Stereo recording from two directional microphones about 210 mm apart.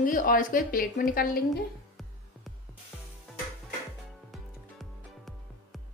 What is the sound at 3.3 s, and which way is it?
Music, centre (ahead or behind).